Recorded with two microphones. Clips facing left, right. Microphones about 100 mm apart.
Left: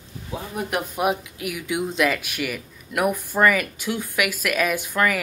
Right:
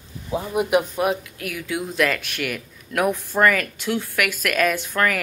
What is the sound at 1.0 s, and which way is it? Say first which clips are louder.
Speech: right 1 dB; 15° left (ahead or behind).